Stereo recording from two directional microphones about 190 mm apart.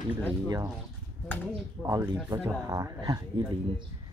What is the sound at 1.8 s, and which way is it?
Speech, 15° right (ahead or behind).